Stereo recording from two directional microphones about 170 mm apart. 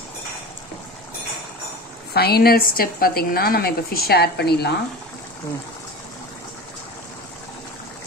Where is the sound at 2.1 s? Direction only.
70° left (ahead or behind).